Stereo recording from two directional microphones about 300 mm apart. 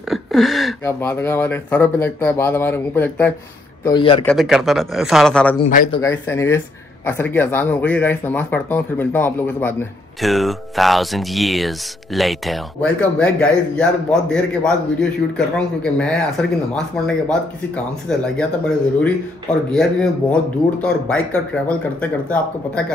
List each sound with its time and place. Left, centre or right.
0.1 s speech: centre
4.2 s speech: centre
19.7 s speech: centre